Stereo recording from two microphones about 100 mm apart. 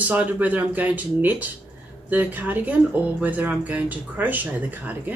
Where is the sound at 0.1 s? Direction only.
15° right (ahead or behind).